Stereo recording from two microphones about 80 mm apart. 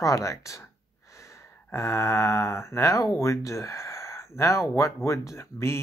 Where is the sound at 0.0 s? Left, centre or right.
Left.